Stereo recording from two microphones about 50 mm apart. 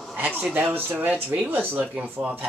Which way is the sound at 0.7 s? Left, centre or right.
Right.